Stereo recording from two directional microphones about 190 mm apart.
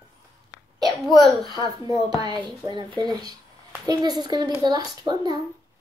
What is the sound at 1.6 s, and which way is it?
A woman's voice, 20° right (ahead or behind).